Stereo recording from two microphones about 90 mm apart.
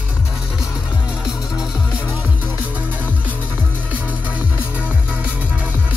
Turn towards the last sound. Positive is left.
turn(degrees=-15)  # may be behind; listen again after turning